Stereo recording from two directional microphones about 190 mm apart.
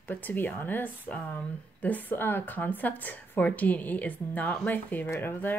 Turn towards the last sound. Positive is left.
turn(degrees=10)  # may be behind; listen again after turning